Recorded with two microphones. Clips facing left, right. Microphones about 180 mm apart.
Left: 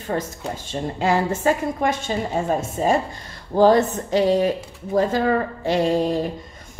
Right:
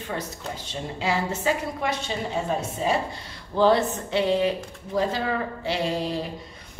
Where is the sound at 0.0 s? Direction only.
45° left (ahead or behind).